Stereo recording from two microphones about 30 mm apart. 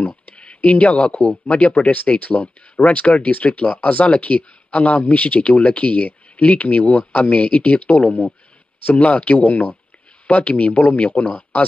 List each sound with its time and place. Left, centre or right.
0.6 s speech: left
4.4 s speech: left
8.8 s speech: left
10.2 s speech: left